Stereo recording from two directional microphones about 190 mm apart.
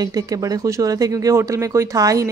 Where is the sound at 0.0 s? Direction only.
20° right (ahead or behind).